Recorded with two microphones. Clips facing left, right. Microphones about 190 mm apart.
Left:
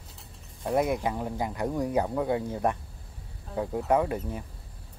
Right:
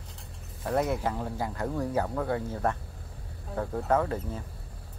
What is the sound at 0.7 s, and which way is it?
Speech, 15° left (ahead or behind).